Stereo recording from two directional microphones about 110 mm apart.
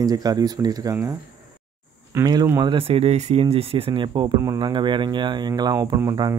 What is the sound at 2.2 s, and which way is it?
Speech, 40° right (ahead or behind).